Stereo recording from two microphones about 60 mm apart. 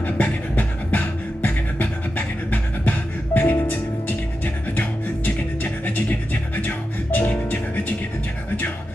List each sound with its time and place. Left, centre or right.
0.0 s music: left